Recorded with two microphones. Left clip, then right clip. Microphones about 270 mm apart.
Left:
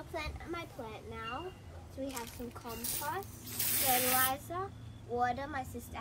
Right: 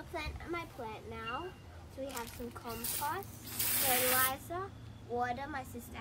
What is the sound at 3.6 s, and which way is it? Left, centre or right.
Speech, right.